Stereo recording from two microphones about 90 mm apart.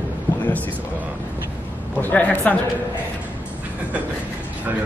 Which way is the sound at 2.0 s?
20° left (ahead or behind).